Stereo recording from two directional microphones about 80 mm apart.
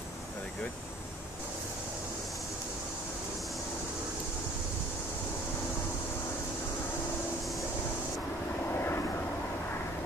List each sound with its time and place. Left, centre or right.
8.7 s vehicle: left